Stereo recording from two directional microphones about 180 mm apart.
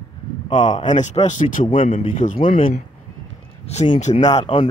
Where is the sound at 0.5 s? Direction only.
45° left (ahead or behind).